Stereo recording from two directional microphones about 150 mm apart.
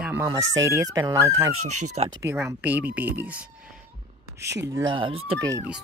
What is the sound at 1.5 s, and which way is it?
Speech, 50° right (ahead or behind).